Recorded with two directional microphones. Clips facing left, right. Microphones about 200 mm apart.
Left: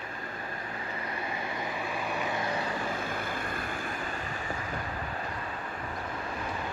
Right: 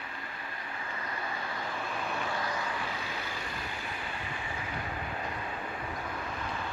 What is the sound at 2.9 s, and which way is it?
Vehicle, 50° left (ahead or behind).